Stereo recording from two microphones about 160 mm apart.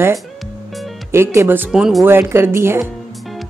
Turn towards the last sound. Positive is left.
turn(degrees=0)  # may be behind; listen again after turning